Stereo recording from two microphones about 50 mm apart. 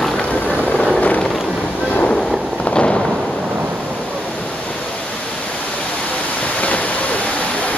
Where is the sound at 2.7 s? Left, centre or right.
Left.